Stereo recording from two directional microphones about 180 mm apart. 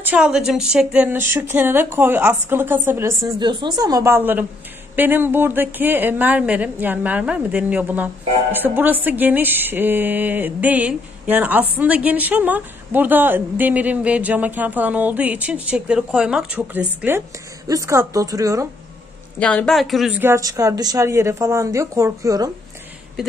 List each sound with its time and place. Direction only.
0.0 s a woman's voice: 5° right (ahead or behind)
19.4 s speech: 5° left (ahead or behind)
20.2 s a woman's voice: 15° right (ahead or behind)